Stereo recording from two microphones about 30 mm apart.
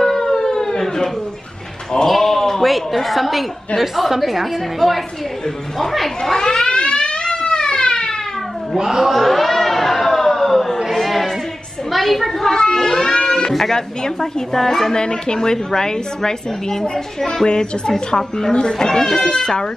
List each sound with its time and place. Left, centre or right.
0.0 s siren: centre
2.0 s a sound: centre
2.6 s a woman's voice: centre
6.3 s a woman's voice: centre
6.7 s fire alarm: left
8.7 s speech: centre
9.0 s a sound: centre
12.4 s a sound: centre
13.5 s a woman's voice: centre
15.0 s a woman's voice: left
17.6 s speech: left